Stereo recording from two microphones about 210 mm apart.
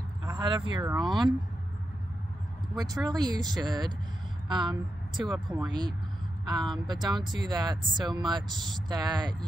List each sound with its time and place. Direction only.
0.2 s speech: 20° right (ahead or behind)
3.1 s speech: 20° right (ahead or behind)